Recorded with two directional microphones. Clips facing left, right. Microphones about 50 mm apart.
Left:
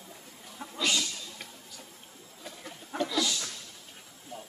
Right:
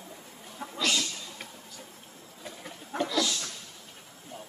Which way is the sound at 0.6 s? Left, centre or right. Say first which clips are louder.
Right 3 dB; centre.